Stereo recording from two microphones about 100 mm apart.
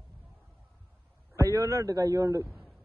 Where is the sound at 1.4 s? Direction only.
30° right (ahead or behind).